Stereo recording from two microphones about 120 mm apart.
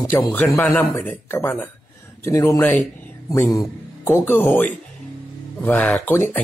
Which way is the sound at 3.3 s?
30° left (ahead or behind).